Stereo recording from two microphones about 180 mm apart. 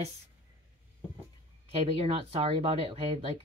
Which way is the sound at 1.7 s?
35° right (ahead or behind).